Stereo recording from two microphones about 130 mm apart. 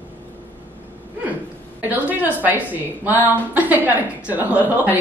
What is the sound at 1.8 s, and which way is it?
A woman's voice, 15° right (ahead or behind).